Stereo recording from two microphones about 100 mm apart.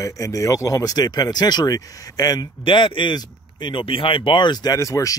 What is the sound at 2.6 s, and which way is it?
Speech, 55° left (ahead or behind).